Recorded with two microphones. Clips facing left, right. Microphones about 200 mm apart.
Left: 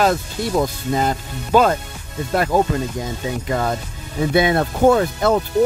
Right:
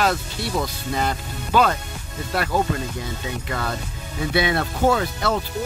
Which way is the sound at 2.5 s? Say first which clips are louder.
Left 5 dB; 45° left (ahead or behind).